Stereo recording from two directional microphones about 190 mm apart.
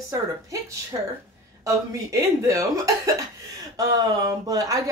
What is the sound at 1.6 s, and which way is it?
Speech, 15° right (ahead or behind).